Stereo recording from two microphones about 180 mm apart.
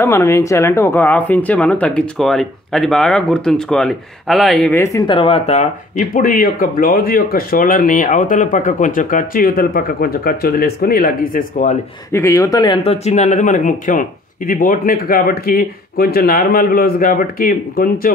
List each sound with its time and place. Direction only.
0.0 s speech: 15° left (ahead or behind)
4.9 s speech: 25° left (ahead or behind); by 11.8 s 45° left (ahead or behind)
12.1 s speech: 15° left (ahead or behind)
12.8 s speech: 35° left (ahead or behind); by 18.1 s 55° left (ahead or behind)